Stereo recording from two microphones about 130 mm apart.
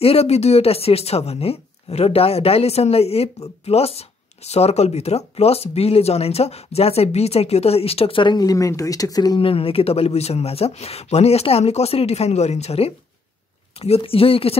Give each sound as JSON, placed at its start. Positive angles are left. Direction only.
{"t": 0.0, "sound": "speech", "side_deg": 50}
{"t": 9.4, "sound": "speech", "side_deg": 45}